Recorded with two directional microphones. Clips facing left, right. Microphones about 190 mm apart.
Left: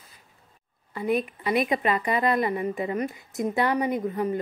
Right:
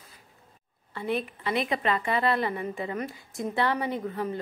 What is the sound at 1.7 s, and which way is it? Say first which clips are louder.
A woman's voice: left 3 dB; 20° left (ahead or behind).